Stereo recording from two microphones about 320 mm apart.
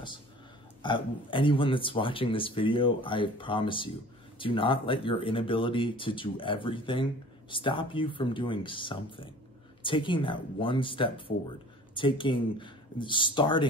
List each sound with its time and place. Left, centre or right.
0.8 s speech: centre